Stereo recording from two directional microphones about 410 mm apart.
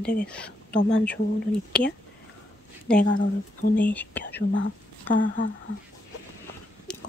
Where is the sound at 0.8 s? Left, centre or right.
Left.